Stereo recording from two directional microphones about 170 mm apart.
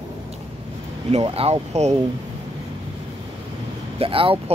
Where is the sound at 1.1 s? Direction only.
35° right (ahead or behind).